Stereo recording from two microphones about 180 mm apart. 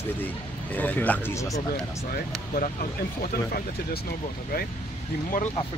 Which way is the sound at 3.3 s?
55° left (ahead or behind).